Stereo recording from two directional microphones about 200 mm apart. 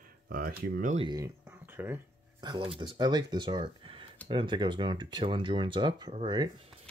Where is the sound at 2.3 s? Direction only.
25° right (ahead or behind).